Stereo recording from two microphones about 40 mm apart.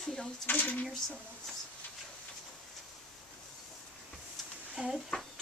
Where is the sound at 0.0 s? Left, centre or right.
Centre.